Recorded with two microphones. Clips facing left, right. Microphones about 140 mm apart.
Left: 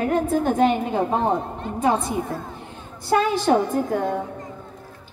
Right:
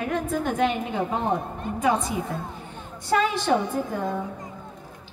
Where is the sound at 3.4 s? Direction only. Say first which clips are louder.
Left 4 dB; 40° left (ahead or behind).